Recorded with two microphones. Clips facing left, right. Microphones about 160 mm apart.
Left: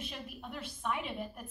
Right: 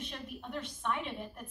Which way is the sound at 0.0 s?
5° left (ahead or behind).